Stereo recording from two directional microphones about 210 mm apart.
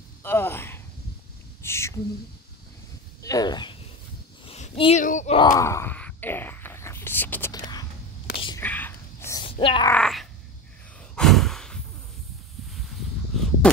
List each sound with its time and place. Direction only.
0.2 s speech: 10° left (ahead or behind)
1.6 s a sound: 15° left (ahead or behind)
3.2 s speech: 15° left (ahead or behind)
4.5 s a sound: 25° left (ahead or behind)
5.0 s speech: 35° left (ahead or behind)
5.4 s whispering: 15° left (ahead or behind)
9.4 s speech: 25° left (ahead or behind)
9.9 s speech: centre (ahead or behind)
11.1 s sigh: centre (ahead or behind)
13.3 s a sound: centre (ahead or behind)